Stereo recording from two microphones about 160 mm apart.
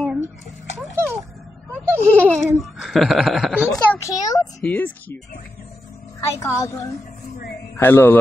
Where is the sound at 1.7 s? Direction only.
15° right (ahead or behind).